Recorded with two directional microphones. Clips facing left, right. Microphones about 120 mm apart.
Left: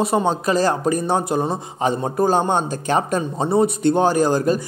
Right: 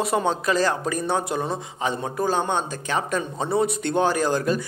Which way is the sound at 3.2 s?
35° left (ahead or behind).